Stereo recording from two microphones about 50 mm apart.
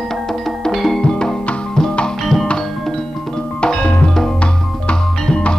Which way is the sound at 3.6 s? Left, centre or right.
Left.